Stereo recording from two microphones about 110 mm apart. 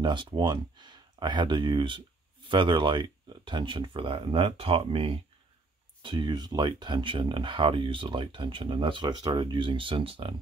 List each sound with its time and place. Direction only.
0.0 s speech: 45° right (ahead or behind)
6.0 s speech: 40° right (ahead or behind)